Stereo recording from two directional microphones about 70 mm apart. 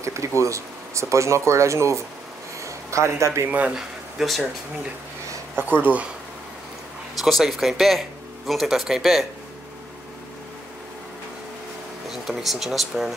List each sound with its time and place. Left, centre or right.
0.0 s a man's voice: right
3.7 s a sound: centre
5.8 s speech: right
7.2 s speech: centre
12.1 s speech: centre